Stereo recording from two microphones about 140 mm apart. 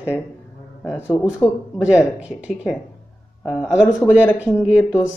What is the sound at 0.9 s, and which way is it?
Speech, 15° left (ahead or behind).